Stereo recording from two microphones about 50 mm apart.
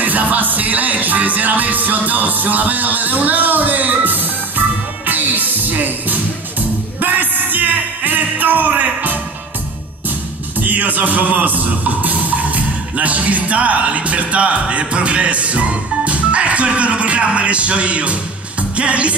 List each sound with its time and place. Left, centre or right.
0.0 s music: right
10.6 s speech: right